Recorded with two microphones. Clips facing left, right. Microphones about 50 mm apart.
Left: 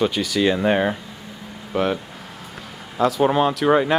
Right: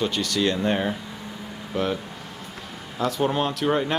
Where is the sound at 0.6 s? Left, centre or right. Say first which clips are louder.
Left 5 dB; left.